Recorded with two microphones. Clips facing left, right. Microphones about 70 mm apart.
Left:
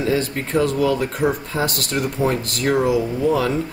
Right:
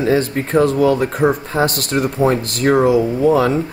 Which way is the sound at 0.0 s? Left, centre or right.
Right.